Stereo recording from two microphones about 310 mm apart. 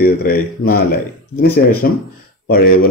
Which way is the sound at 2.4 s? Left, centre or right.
Left.